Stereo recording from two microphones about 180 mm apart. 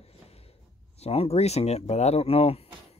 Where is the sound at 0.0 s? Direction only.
35° left (ahead or behind).